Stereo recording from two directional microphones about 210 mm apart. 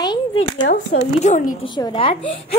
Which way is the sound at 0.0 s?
25° left (ahead or behind).